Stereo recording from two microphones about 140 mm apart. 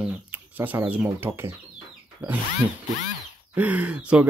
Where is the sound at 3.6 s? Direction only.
10° right (ahead or behind).